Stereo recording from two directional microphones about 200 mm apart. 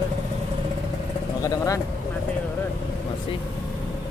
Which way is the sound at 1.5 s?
15° left (ahead or behind).